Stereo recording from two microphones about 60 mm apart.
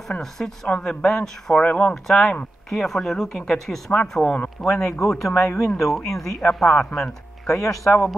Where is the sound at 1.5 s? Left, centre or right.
Left.